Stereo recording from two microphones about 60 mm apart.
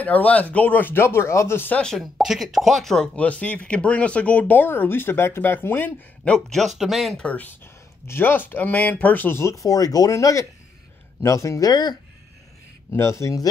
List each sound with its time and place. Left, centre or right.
0.0 s speech: left
2.0 s speech: centre
3.2 s speech: left
6.2 s speech: centre
7.2 s speech: left
7.6 s speech: left
9.3 s speech: left
13.0 s speech: left